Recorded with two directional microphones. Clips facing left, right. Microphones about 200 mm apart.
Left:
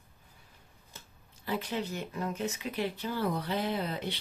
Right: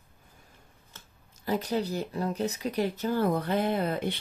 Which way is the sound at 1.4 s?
40° right (ahead or behind).